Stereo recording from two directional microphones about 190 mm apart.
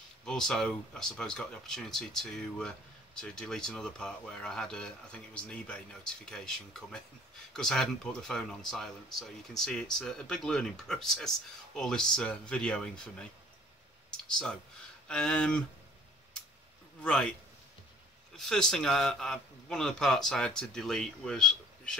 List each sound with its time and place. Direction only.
0.2 s speech: 5° left (ahead or behind)
15.0 s speech: 5° left (ahead or behind)
17.0 s speech: 5° left (ahead or behind)
18.3 s speech: 5° left (ahead or behind)